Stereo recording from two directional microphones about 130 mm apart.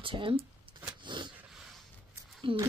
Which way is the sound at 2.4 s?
40° right (ahead or behind).